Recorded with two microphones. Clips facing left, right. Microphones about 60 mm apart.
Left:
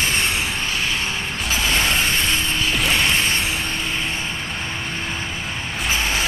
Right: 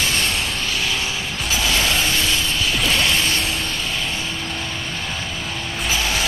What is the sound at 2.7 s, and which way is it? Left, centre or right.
Mechanisms, centre.